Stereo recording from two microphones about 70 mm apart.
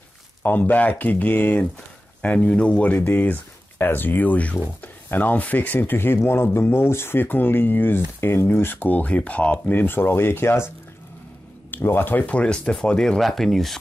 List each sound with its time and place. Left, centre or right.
0.4 s speech: left
11.7 s speech: left; by 13.2 s centre
13.2 s speech: centre